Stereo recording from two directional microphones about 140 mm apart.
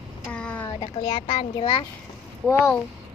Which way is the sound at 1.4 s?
35° left (ahead or behind).